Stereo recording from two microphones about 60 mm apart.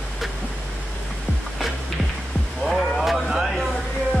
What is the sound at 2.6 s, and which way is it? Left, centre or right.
Vehicle, centre.